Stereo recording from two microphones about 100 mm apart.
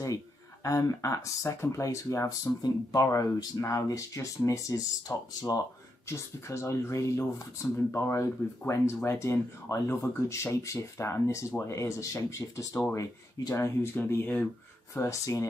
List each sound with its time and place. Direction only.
0.7 s speech: 35° left (ahead or behind)
6.0 s speech: 30° left (ahead or behind)